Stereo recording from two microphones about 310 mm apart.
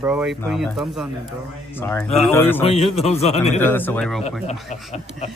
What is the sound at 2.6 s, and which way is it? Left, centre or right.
Speech, centre.